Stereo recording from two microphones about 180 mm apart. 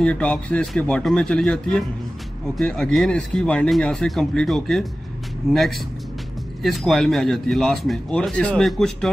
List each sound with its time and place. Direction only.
0.0 s speech: 5° left (ahead or behind)